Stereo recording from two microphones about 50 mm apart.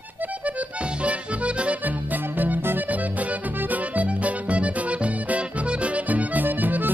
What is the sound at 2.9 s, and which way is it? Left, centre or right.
Music, right.